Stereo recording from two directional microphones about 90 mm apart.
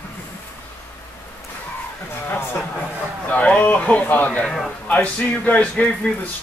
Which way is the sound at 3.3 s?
15° left (ahead or behind).